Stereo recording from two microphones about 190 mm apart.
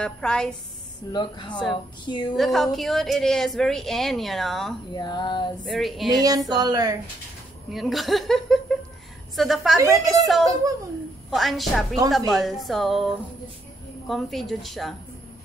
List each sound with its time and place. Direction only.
0.0 s a woman's voice: 5° left (ahead or behind)
1.1 s speech: 25° left (ahead or behind)
2.3 s a woman's voice: centre (ahead or behind)
4.9 s speech: 20° left (ahead or behind)
5.7 s a woman's voice: centre (ahead or behind)
6.1 s speech: 20° right (ahead or behind)
7.7 s a woman's voice: centre (ahead or behind)